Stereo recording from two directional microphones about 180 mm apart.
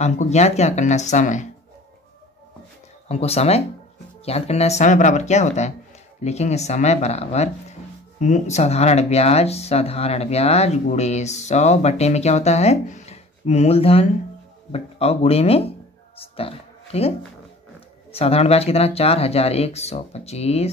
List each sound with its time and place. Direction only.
0.0 s speech: 40° left (ahead or behind)
3.1 s speech: 35° left (ahead or behind)
16.2 s a sound: 30° left (ahead or behind)
18.1 s speech: 35° left (ahead or behind)